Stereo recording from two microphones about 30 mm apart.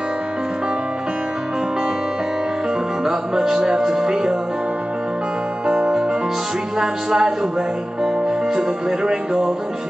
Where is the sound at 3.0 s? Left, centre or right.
Centre.